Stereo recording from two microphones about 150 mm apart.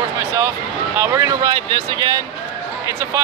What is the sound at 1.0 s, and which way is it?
Speech, 20° right (ahead or behind).